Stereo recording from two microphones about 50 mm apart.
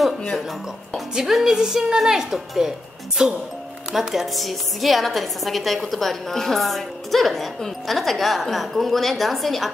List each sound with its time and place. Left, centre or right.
1.1 s speech: centre
4.1 s a woman's voice: centre